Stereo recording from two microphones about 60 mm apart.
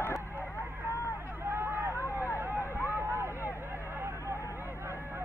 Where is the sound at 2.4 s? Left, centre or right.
Right.